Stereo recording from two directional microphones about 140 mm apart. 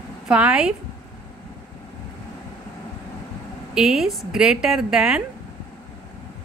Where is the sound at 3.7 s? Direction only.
5° right (ahead or behind).